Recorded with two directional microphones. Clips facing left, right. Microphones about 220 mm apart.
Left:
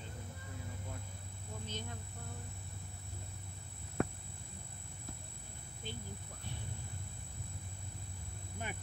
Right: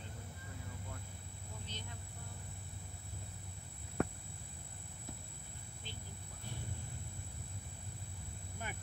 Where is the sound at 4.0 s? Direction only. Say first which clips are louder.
Left 1 dB; centre (ahead or behind).